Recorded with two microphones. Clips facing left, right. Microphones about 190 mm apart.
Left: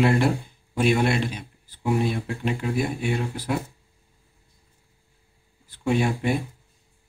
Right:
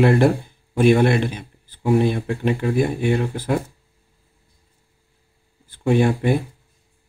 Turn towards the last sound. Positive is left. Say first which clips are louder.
# right 5 dB
turn(degrees=-55)  # may be behind; listen again after turning